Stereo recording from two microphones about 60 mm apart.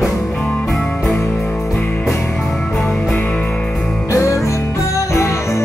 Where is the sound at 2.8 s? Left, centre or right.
Centre.